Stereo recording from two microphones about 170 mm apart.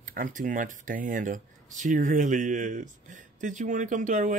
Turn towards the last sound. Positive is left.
turn(degrees=-45)  # may be behind; listen again after turning